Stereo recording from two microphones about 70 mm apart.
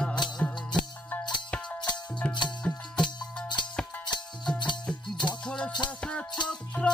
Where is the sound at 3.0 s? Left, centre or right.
Left.